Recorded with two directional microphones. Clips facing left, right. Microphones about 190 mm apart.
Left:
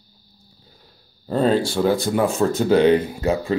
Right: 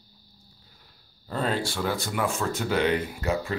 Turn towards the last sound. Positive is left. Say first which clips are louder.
# left 6 dB
turn(degrees=30)  # may be behind; listen again after turning